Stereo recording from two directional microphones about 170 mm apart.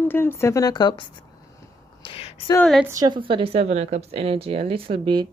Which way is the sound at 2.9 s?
25° right (ahead or behind).